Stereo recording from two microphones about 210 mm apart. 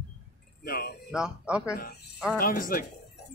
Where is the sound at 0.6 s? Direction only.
45° left (ahead or behind).